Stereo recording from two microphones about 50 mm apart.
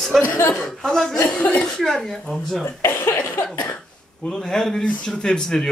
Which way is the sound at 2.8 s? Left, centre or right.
Left.